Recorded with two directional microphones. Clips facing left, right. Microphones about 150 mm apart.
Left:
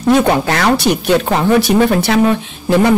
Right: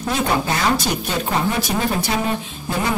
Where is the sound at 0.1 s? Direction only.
75° left (ahead or behind).